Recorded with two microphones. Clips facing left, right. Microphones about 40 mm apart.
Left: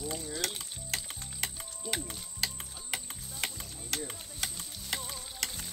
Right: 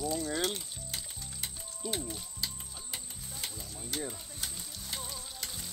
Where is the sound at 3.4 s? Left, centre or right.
Left.